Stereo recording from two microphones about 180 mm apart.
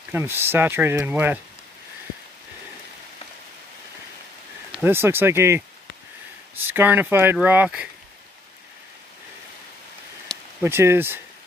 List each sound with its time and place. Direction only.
0.1 s speech: 10° right (ahead or behind)
4.7 s speech: 10° right (ahead or behind)
10.6 s speech: 15° right (ahead or behind)